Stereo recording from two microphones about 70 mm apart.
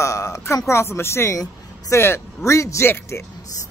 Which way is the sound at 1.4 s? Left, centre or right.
Left.